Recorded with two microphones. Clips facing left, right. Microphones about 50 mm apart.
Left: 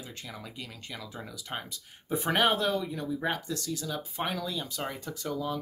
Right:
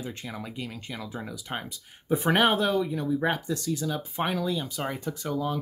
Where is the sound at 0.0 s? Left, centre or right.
Right.